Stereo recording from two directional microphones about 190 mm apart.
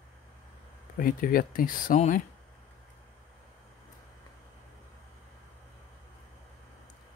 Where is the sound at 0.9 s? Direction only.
50° left (ahead or behind).